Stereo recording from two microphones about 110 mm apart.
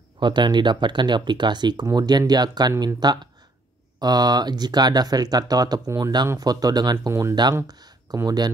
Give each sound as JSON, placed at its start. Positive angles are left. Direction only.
{"t": 0.2, "sound": "speech", "side_deg": -45}
{"t": 7.1, "sound": "speech", "side_deg": -25}
{"t": 7.6, "sound": "speech", "side_deg": -40}